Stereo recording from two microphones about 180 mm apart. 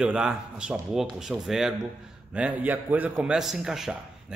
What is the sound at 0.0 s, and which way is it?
A man's voice, 5° right (ahead or behind).